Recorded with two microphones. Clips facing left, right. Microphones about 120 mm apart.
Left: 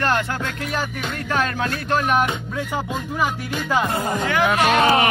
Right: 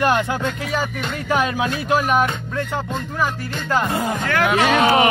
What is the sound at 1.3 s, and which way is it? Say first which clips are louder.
Speech: right 3 dB; 10° right (ahead or behind).